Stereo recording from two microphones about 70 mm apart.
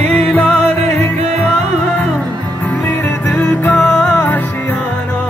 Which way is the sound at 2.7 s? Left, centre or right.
Left.